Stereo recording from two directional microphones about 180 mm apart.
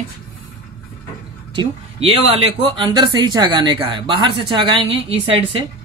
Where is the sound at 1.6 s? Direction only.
30° right (ahead or behind).